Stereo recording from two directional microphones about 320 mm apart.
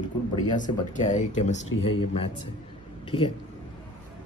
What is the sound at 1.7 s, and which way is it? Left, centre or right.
Speech, left.